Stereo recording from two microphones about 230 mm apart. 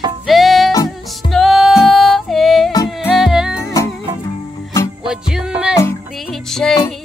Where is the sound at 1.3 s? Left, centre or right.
Centre.